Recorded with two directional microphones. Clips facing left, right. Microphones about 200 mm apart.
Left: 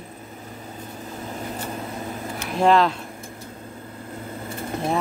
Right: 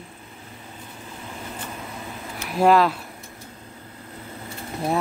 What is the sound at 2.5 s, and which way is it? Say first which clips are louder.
Speech: right 1 dB; 5° right (ahead or behind).